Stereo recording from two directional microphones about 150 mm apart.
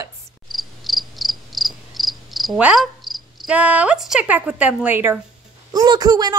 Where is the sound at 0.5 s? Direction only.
Centre (ahead or behind).